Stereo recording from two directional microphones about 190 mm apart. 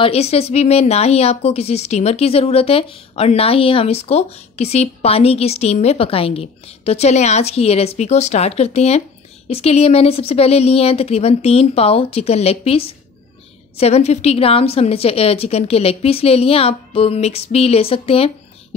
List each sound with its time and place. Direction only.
0.0 s speech: 30° left (ahead or behind)